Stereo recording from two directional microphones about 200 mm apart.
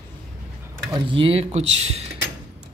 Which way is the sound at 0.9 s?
25° right (ahead or behind).